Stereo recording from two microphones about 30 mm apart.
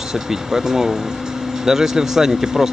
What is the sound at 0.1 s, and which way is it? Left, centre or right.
Speech, centre.